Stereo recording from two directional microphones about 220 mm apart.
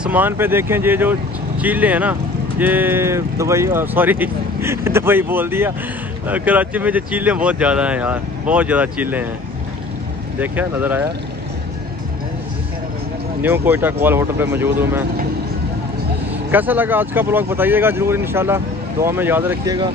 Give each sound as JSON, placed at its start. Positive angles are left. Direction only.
{"t": 0.0, "sound": "speech", "side_deg": -10}
{"t": 10.4, "sound": "speech", "side_deg": -10}
{"t": 13.4, "sound": "speech", "side_deg": -10}
{"t": 16.5, "sound": "speech", "side_deg": -10}